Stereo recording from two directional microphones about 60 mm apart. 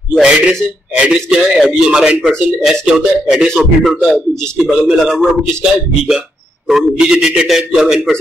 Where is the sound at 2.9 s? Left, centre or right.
Centre.